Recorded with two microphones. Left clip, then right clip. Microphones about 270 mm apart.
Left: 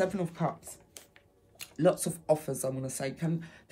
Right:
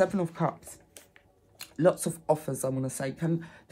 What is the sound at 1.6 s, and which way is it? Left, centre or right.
Speech, right.